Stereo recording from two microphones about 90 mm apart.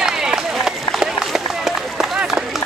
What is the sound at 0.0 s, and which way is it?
Run, 5° right (ahead or behind).